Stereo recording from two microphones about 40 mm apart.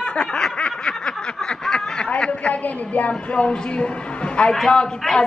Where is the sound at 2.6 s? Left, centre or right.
Left.